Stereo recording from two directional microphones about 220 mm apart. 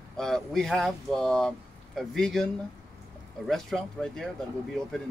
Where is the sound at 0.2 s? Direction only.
Centre (ahead or behind).